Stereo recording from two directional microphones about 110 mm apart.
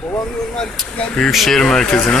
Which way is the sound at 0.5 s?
5° left (ahead or behind).